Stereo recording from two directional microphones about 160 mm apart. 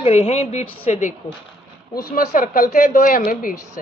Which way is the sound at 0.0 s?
40° left (ahead or behind).